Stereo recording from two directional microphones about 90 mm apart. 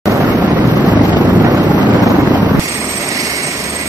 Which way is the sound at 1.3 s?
50° right (ahead or behind).